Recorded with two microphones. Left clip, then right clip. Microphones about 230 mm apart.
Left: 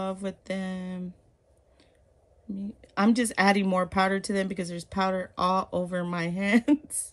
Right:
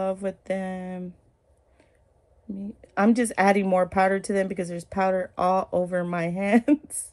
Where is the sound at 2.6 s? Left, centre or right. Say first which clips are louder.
Right 3 dB; centre.